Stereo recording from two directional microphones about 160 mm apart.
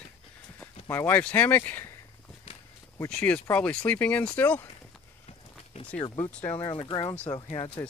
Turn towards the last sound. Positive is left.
turn(degrees=35)  # may be behind; listen again after turning